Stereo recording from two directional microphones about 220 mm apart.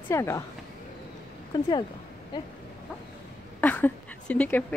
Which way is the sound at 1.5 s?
20° left (ahead or behind).